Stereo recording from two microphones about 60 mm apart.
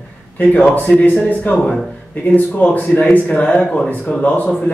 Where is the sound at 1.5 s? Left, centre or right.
Left.